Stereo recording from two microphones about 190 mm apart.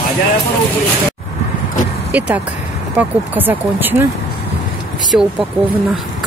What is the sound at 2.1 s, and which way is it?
Speech, 5° right (ahead or behind).